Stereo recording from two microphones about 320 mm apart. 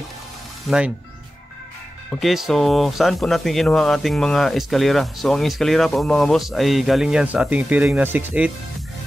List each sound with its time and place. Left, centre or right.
0.7 s speech: centre
2.0 s speech: centre